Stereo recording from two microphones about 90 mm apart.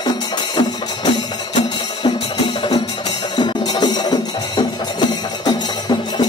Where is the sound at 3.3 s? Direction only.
55° left (ahead or behind).